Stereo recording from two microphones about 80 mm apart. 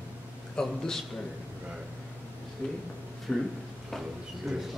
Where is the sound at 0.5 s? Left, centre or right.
Centre.